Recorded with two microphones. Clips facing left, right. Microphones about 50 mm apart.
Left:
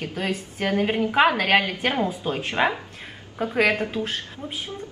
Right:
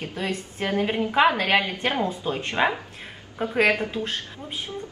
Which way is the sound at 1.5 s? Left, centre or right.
Left.